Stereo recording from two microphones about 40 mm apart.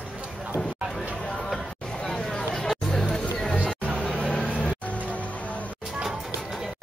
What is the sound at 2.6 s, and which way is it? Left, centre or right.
Hubbub, centre.